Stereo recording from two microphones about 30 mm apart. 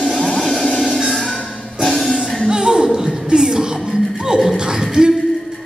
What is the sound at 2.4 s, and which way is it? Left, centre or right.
Music, right.